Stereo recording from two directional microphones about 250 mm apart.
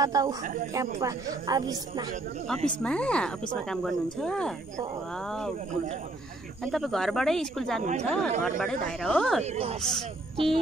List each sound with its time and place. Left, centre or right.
0.0 s a woman's voice: centre
2.4 s speech: centre
6.6 s speech: centre
9.4 s speech: right
9.8 s speech: centre